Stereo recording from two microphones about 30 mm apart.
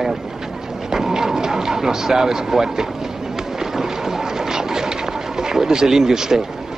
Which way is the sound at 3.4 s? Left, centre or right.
Centre.